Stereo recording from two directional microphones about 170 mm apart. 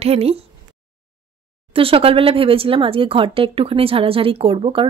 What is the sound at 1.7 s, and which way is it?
Speech, 35° right (ahead or behind).